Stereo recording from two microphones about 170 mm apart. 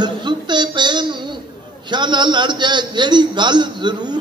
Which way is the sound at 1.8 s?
25° right (ahead or behind).